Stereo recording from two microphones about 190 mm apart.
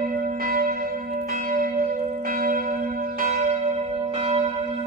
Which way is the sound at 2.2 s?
50° right (ahead or behind).